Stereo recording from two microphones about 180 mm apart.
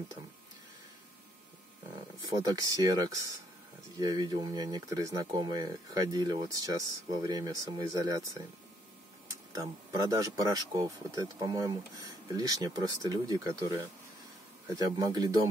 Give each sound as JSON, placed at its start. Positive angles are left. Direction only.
{"t": 2.3, "sound": "speech", "side_deg": -20}
{"t": 9.5, "sound": "speech", "side_deg": -20}